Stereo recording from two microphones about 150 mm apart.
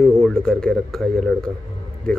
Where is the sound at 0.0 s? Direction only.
5° left (ahead or behind).